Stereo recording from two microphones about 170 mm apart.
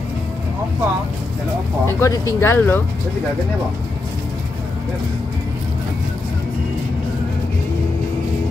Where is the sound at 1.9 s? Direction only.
15° left (ahead or behind).